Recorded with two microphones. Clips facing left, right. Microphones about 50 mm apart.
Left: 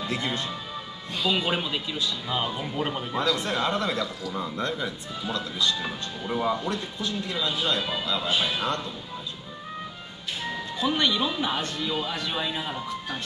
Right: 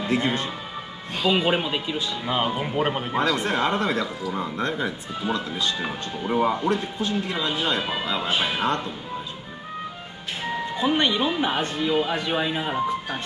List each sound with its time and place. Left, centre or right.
0.0 s speech: right
10.4 s speech: right